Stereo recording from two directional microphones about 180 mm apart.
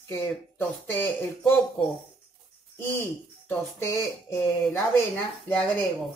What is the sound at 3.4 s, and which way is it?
Speech, 15° left (ahead or behind).